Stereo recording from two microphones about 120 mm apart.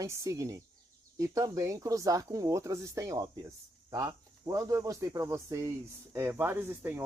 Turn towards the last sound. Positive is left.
turn(degrees=-20)  # may be behind; listen again after turning